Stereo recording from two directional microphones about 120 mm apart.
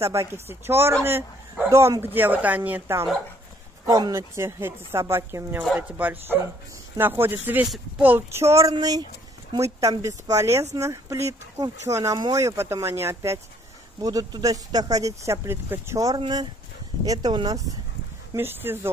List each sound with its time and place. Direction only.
0.0 s speech: 25° right (ahead or behind)
16.2 s speech: 35° right (ahead or behind)
18.3 s speech: 20° right (ahead or behind)